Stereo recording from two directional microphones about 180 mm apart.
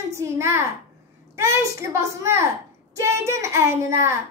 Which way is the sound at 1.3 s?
15° right (ahead or behind).